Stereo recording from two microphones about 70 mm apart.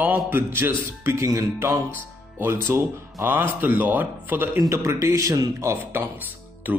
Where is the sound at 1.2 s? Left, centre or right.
Right.